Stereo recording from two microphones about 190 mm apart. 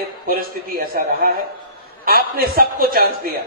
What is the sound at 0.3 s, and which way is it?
A man's voice, 50° right (ahead or behind).